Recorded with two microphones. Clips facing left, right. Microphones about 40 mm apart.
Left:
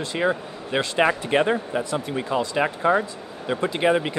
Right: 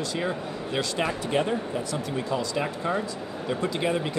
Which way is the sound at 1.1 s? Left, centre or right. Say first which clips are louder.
Left 5 dB; left.